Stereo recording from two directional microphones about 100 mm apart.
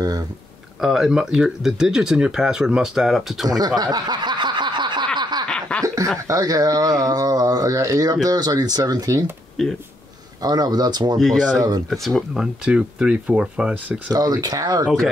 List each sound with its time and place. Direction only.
0.0 s speech: 40° right (ahead or behind)
0.7 s speech: 5° right (ahead or behind)
3.4 s snicker: 40° right (ahead or behind)
5.5 s snicker: 10° left (ahead or behind)
6.2 s speech: 35° right (ahead or behind)
9.6 s speech: 5° left (ahead or behind)
10.4 s speech: 40° right (ahead or behind)
11.1 s speech: centre (ahead or behind)
12.4 s speech: 10° right (ahead or behind)
14.1 s speech: 40° right (ahead or behind)